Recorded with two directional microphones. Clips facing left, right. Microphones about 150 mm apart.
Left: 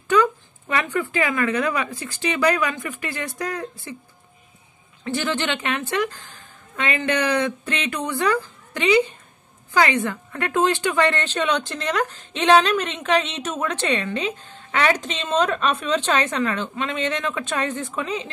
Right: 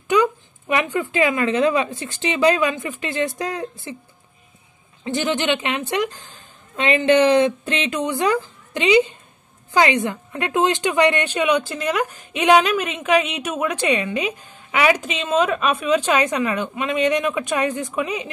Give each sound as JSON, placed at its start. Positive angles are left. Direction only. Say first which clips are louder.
{"t": 0.1, "sound": "a woman's voice", "louder": "right 1 dB", "side_deg": -20}
{"t": 5.0, "sound": "a woman's voice", "louder": "right 3 dB", "side_deg": -20}